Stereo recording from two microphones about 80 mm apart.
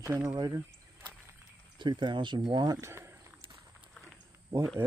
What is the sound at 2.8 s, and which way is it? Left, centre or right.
Speech, right.